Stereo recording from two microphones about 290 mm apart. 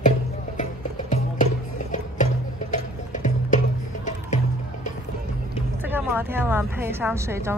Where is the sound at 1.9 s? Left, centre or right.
Left.